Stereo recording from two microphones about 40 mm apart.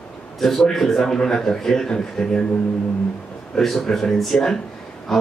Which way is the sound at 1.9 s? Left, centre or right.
Left.